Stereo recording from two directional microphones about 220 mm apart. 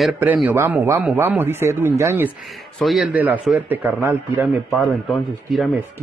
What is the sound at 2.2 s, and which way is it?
Speech, centre (ahead or behind).